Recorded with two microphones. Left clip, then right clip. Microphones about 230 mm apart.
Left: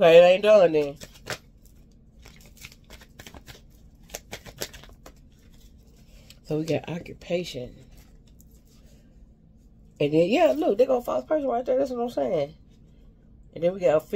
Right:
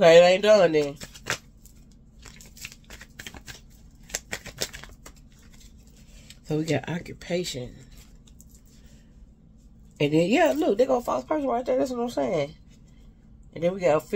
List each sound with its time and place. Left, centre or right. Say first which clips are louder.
0.0 s speech: even; centre
0.9 s shuffling cards: right 4 dB; centre
2.2 s a sound: right 4 dB; centre
4.1 s scissors: right 5 dB; centre
6.4 s speech: even; centre
9.9 s speech: left 1 dB; centre